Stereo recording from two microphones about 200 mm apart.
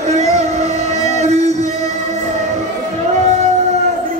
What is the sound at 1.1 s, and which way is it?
Music, 35° right (ahead or behind).